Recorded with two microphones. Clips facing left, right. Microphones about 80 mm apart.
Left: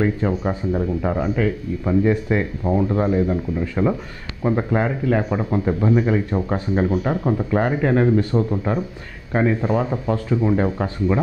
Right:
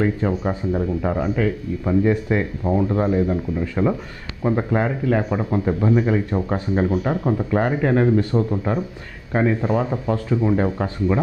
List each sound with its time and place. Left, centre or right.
0.0 s speech: left